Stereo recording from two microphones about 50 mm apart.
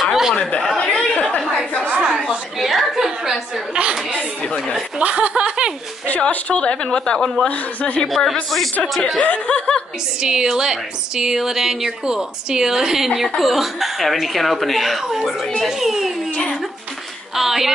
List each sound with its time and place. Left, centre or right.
0.0 s a sound: centre
0.6 s chatter: centre
2.0 s chatter: centre
2.2 s a sound: centre
4.4 s speech: left
4.9 s speech: right
6.0 s a woman's voice: left
9.2 s a woman's voice: left
10.2 s speech: centre
17.4 s speech: centre